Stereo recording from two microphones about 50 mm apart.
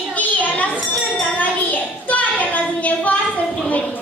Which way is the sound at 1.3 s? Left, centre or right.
Left.